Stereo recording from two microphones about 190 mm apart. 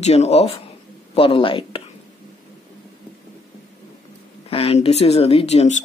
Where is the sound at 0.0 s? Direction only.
35° left (ahead or behind).